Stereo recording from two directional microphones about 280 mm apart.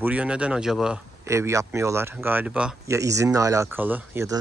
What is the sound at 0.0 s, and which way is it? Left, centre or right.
Speech, centre.